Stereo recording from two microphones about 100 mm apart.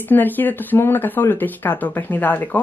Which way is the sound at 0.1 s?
20° left (ahead or behind).